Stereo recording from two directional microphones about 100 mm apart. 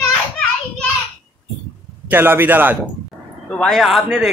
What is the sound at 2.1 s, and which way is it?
Speech, 20° right (ahead or behind).